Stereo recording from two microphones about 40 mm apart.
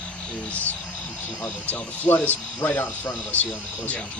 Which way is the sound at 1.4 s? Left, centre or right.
Left.